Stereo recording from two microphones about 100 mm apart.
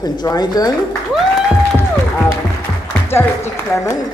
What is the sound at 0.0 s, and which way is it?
Speech, 40° left (ahead or behind).